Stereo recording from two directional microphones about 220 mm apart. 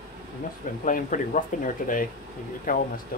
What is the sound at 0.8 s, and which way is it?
Speech, 35° left (ahead or behind).